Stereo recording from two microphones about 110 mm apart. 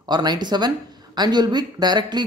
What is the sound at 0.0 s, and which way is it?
Speech, 40° right (ahead or behind).